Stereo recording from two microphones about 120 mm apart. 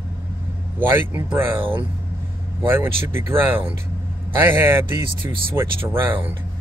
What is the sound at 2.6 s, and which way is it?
Speech, 20° right (ahead or behind).